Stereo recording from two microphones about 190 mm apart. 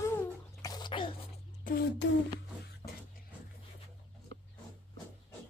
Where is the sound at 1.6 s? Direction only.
60° left (ahead or behind).